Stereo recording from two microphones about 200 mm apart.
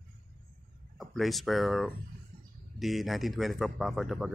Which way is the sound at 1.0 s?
Centre (ahead or behind).